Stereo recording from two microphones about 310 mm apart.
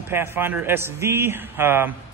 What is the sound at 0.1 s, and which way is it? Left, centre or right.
A man's voice, centre.